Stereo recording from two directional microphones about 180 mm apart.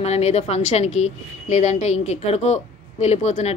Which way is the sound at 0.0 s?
35° left (ahead or behind).